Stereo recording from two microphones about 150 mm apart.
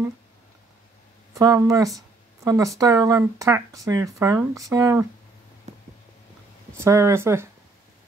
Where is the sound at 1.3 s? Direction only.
20° right (ahead or behind).